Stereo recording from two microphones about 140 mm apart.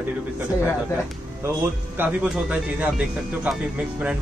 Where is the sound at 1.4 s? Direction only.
15° right (ahead or behind).